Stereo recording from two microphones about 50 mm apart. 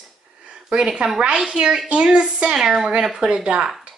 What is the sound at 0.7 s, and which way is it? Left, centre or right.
Speech, centre.